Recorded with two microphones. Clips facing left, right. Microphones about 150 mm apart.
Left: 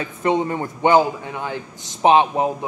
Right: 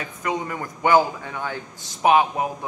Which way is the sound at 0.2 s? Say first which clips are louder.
Left 7 dB; 30° left (ahead or behind).